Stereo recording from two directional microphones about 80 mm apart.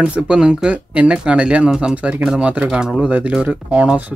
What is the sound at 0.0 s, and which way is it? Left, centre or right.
Speech, centre.